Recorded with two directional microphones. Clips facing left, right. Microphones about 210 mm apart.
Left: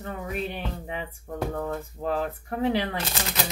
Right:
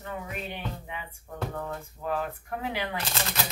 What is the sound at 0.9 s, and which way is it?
Speech, 40° left (ahead or behind).